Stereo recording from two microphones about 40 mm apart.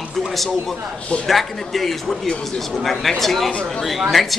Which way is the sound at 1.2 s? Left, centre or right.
Centre.